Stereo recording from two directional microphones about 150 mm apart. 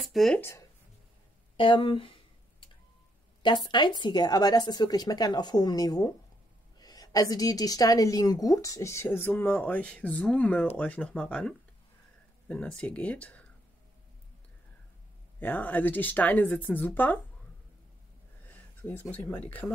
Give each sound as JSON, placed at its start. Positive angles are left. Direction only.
{"t": 0.0, "sound": "speech", "side_deg": 0}
{"t": 0.4, "sound": "speech", "side_deg": 20}
{"t": 1.6, "sound": "speech", "side_deg": 35}
{"t": 3.4, "sound": "a woman's voice", "side_deg": 30}
{"t": 15.3, "sound": "speech", "side_deg": 10}
{"t": 18.5, "sound": "speech", "side_deg": 10}